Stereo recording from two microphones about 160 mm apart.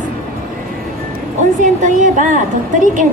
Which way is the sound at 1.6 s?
50° right (ahead or behind).